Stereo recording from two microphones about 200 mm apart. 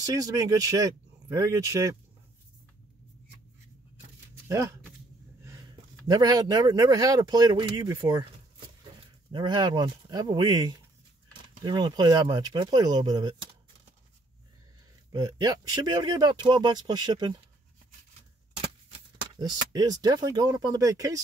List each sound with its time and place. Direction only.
0.0 s speech: 15° right (ahead or behind)
4.5 s speech: 15° right (ahead or behind)
5.4 s gasp: 15° right (ahead or behind)
6.0 s speech: 20° right (ahead or behind)
9.3 s speech: 20° right (ahead or behind)
15.1 s speech: 20° right (ahead or behind)
18.6 s speech: 25° right (ahead or behind)